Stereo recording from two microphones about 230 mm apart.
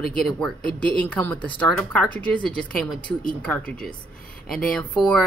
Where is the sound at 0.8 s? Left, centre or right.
Centre.